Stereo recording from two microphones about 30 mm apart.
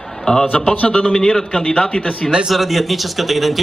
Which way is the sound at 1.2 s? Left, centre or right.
Centre.